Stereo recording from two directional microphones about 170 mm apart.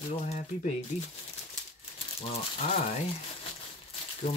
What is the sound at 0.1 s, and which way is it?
Speech, 40° left (ahead or behind).